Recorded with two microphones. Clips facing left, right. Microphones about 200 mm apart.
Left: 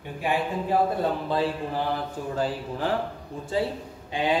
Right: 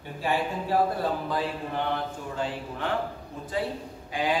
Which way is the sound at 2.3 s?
35° left (ahead or behind).